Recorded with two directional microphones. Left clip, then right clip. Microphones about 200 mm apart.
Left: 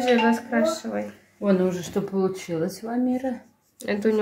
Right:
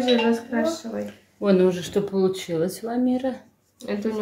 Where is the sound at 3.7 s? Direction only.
50° left (ahead or behind).